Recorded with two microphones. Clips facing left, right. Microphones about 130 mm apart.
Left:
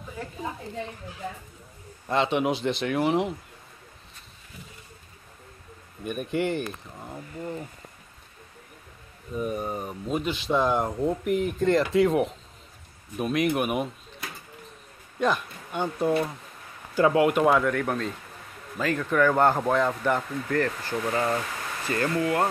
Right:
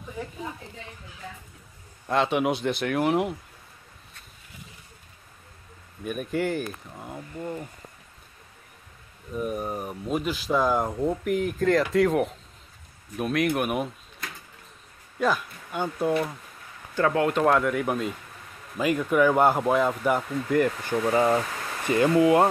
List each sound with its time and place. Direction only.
2.0 s speech: centre (ahead or behind)
6.0 s speech: centre (ahead or behind)
9.3 s speech: centre (ahead or behind)
16.9 s speech: 15° left (ahead or behind); by 22.5 s 20° right (ahead or behind)